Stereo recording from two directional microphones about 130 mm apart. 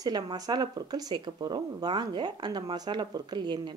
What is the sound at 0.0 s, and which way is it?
Speech, 30° right (ahead or behind).